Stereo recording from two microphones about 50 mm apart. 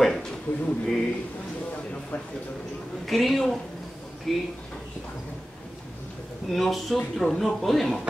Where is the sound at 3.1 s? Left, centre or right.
Centre.